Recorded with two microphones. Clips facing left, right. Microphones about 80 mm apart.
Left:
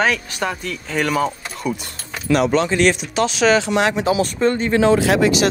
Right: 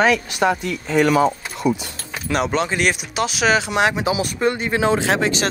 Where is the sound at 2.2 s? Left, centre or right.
Right.